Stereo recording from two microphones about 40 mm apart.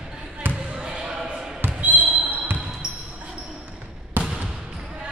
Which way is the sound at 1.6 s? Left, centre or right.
Right.